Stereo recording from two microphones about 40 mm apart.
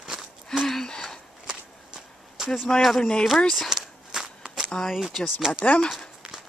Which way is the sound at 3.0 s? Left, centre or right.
Left.